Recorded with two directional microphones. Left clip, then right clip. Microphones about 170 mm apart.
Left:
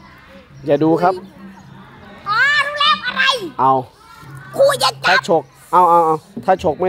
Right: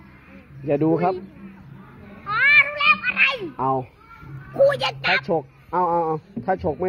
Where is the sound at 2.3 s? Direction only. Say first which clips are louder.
Left 1 dB; 45° left (ahead or behind).